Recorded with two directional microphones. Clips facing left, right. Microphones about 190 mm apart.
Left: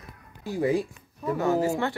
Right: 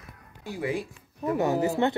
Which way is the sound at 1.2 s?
20° right (ahead or behind).